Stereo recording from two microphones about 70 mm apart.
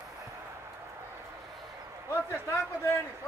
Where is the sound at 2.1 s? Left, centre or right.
Left.